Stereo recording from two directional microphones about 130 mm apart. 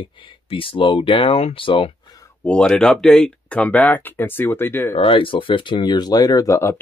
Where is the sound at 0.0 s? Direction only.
45° left (ahead or behind).